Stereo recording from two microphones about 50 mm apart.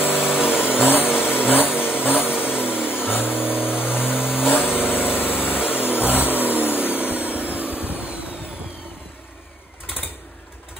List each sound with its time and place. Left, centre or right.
0.0 s vehicle: left
7.9 s vehicle: right